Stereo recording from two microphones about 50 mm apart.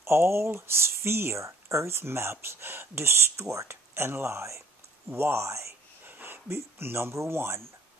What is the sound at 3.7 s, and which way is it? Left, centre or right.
Speech, right.